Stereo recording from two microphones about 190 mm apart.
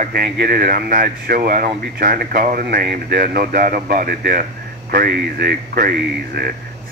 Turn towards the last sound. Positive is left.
turn(degrees=-55)  # may be behind; listen again after turning